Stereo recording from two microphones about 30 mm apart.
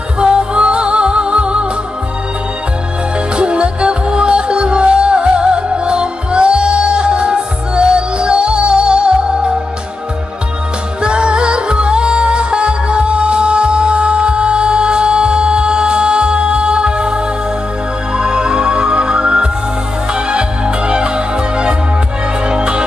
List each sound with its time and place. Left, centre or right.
0.2 s music: right
3.3 s music: right
11.0 s music: right